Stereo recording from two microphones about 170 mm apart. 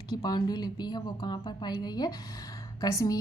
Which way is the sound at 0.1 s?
25° left (ahead or behind).